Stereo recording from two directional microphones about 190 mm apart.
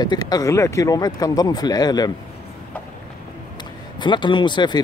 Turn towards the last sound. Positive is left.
turn(degrees=25)  # may be behind; listen again after turning